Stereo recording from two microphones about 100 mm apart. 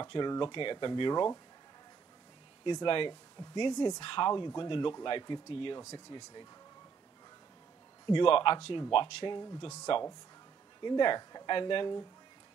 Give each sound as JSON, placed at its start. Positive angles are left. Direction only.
{"t": 0.0, "sound": "speech", "side_deg": 50}
{"t": 2.6, "sound": "speech", "side_deg": 50}
{"t": 5.8, "sound": "speech", "side_deg": 35}
{"t": 8.1, "sound": "speech", "side_deg": 60}
{"t": 9.9, "sound": "speech", "side_deg": 65}
{"t": 10.8, "sound": "speech", "side_deg": 50}